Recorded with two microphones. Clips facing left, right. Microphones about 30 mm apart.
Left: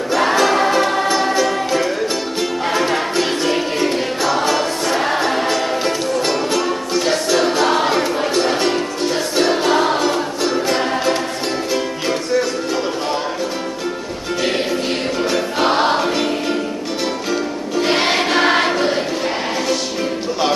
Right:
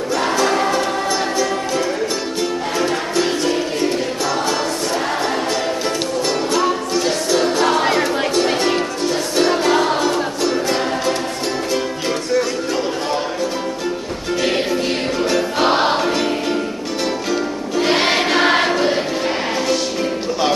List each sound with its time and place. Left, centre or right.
0.3 s music: centre
7.1 s choir: centre
8.4 s music: centre
14.4 s music: centre
17.7 s choir: centre